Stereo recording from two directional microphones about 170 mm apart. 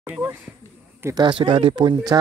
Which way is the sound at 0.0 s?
10° right (ahead or behind).